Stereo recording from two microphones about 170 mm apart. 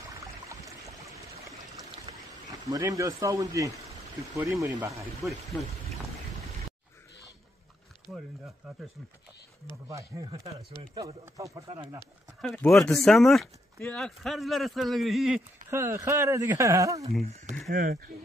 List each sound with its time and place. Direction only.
2.1 s a sound: 30° right (ahead or behind)
2.6 s speech: 20° right (ahead or behind)
9.8 s speech: 20° right (ahead or behind)
12.4 s speech: 5° left (ahead or behind)
15.7 s speech: 15° right (ahead or behind)
17.2 s speech: 40° right (ahead or behind)
17.6 s speech: 55° right (ahead or behind)